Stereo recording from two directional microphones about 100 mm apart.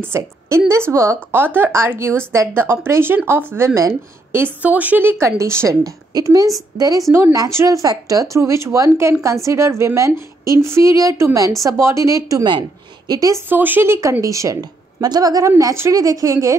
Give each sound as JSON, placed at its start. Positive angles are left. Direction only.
{"t": 0.0, "sound": "a woman's voice", "side_deg": -25}
{"t": 4.6, "sound": "a woman's voice", "side_deg": -15}
{"t": 13.5, "sound": "a woman's voice", "side_deg": -20}